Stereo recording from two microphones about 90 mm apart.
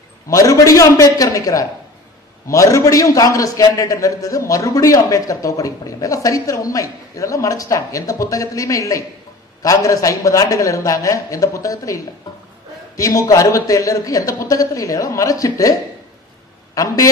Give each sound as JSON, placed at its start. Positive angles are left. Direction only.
{"t": 0.3, "sound": "a man's voice", "side_deg": 35}